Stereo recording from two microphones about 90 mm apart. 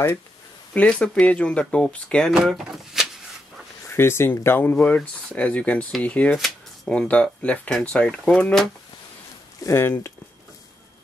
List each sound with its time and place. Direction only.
0.7 s speech: 10° left (ahead or behind)
2.3 s a sound: 5° right (ahead or behind)
3.9 s speech: 25° left (ahead or behind)
6.3 s a sound: centre (ahead or behind)
6.9 s speech: 15° left (ahead or behind)
9.8 s speech: 25° left (ahead or behind)